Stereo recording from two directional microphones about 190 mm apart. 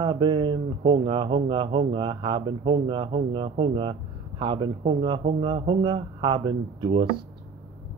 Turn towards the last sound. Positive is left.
turn(degrees=-25)  # may be behind; listen again after turning